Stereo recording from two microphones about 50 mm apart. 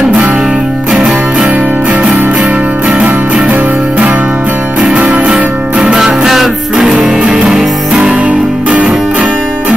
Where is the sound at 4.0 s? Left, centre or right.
Right.